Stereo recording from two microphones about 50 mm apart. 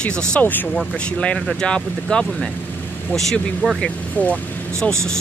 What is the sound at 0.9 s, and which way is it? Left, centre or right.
Speech, left.